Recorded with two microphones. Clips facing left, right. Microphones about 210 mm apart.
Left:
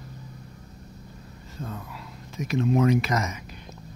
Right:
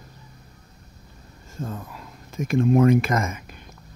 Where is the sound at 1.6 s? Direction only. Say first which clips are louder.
Right 4 dB; 45° right (ahead or behind).